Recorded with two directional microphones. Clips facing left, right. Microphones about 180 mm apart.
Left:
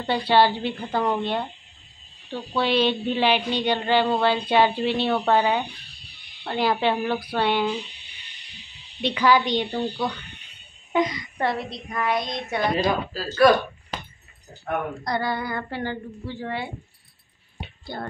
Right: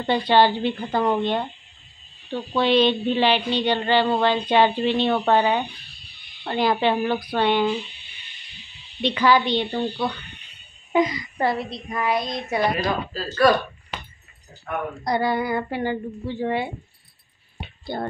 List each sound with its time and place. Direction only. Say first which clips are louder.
0.0 s child singing: right 1 dB; 5° left (ahead or behind)
2.5 s child singing: right 3 dB; 10° left (ahead or behind)
6.4 s a woman's voice: right 2 dB; centre (ahead or behind)
7.3 s child singing: right 3 dB; 5° left (ahead or behind)
9.0 s child singing: right 1 dB; 10° left (ahead or behind)
10.9 s a woman's voice: right 2 dB; centre (ahead or behind)
12.8 s child singing: left 1 dB; 5° left (ahead or behind)
15.0 s a woman's voice: right 7 dB; 15° right (ahead or behind)
17.9 s music: right 5 dB; 20° right (ahead or behind)